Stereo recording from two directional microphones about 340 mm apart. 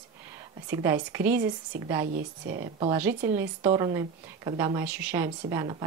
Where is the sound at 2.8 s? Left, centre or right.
Centre.